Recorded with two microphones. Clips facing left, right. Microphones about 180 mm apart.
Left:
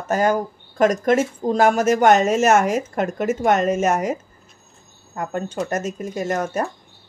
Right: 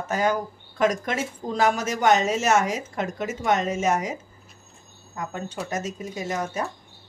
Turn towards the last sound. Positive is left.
turn(degrees=50)  # may be behind; listen again after turning